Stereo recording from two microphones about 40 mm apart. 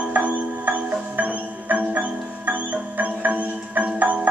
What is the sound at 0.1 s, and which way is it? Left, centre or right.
Music, right.